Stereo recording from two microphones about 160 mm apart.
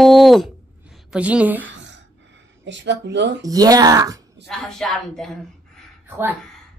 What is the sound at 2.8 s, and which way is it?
Speech, 90° right.